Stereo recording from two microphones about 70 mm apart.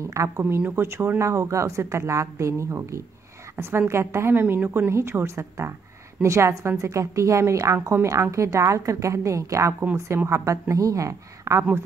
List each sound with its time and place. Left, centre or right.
0.0 s a woman's voice: right
0.4 s a woman's voice: right